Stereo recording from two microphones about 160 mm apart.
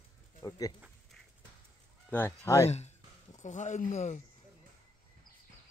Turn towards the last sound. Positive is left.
turn(degrees=45)  # may be behind; listen again after turning